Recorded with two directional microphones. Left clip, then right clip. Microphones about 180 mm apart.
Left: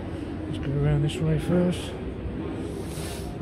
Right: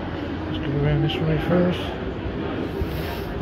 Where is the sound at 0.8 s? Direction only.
30° left (ahead or behind).